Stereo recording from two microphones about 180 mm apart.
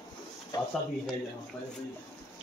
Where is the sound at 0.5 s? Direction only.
20° left (ahead or behind).